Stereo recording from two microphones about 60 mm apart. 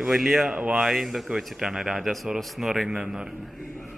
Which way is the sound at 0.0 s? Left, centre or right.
Centre.